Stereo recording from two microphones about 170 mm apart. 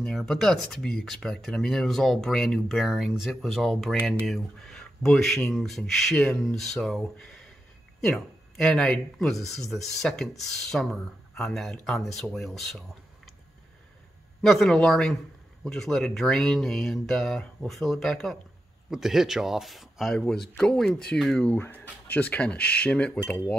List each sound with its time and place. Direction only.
0.0 s speech: centre (ahead or behind)
14.4 s speech: centre (ahead or behind)